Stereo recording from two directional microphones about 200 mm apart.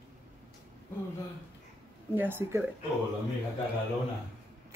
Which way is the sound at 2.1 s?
10° right (ahead or behind).